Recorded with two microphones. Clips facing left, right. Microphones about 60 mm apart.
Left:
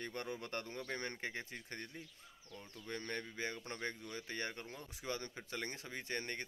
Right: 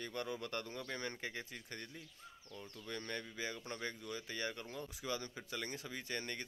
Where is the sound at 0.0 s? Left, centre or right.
Left.